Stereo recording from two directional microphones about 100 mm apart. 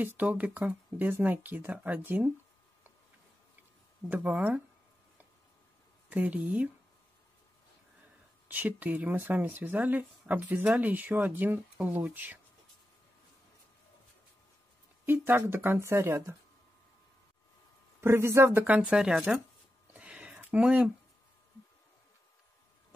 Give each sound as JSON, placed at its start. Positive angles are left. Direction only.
{"t": 0.0, "sound": "speech", "side_deg": -15}
{"t": 4.1, "sound": "speech", "side_deg": -15}
{"t": 6.0, "sound": "speech", "side_deg": -15}
{"t": 8.5, "sound": "speech", "side_deg": -15}
{"t": 15.0, "sound": "speech", "side_deg": -20}
{"t": 18.0, "sound": "speech", "side_deg": -25}
{"t": 19.9, "sound": "a sound", "side_deg": -15}